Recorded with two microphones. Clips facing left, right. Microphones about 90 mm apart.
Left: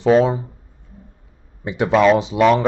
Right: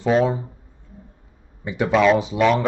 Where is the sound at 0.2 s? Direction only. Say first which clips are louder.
Left 3 dB; 20° left (ahead or behind).